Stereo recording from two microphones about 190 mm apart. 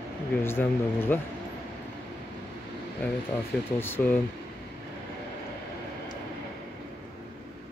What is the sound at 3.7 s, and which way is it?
Speech, 10° left (ahead or behind).